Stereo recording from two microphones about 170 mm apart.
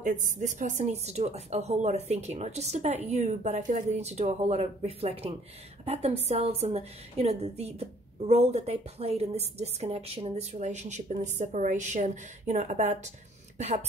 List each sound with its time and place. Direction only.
0.0 s a woman's voice: 45° right (ahead or behind)